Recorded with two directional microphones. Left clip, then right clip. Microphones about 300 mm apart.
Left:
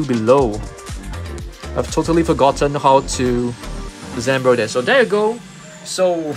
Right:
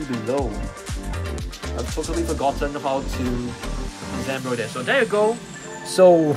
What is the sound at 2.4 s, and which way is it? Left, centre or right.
Speech, left.